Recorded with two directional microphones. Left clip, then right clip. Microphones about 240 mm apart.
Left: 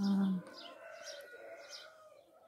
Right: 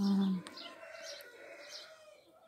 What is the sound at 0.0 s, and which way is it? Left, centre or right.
Bird, centre.